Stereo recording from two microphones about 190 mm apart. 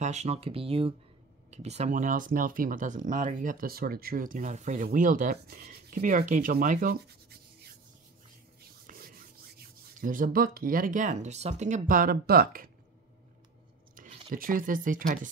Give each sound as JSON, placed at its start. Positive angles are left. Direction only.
{"t": 0.0, "sound": "speech", "side_deg": -35}
{"t": 8.9, "sound": "rub", "side_deg": -45}
{"t": 9.6, "sound": "speech", "side_deg": -45}
{"t": 13.9, "sound": "speech", "side_deg": -45}